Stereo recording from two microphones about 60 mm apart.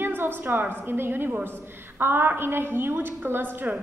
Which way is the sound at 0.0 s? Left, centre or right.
Right.